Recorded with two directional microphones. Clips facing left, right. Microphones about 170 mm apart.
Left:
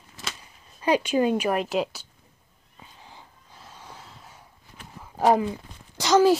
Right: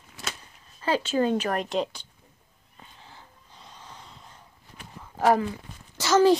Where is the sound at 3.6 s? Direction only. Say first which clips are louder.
Left 2 dB; 10° left (ahead or behind).